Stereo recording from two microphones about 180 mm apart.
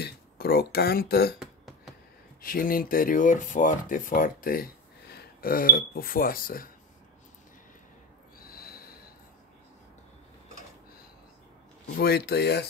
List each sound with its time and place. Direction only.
0.0 s speech: 60° left (ahead or behind)
1.4 s a sound: centre (ahead or behind)
2.4 s speech: 55° left (ahead or behind)
8.4 s snort: 55° left (ahead or behind)
12.0 s speech: 65° left (ahead or behind)